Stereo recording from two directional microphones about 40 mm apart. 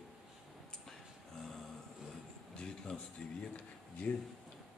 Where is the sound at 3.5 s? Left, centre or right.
Left.